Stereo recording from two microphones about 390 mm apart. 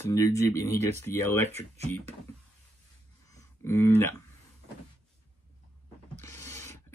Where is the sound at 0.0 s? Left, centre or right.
Centre.